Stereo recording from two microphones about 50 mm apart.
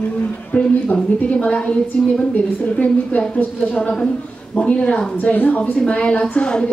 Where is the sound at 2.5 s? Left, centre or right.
Left.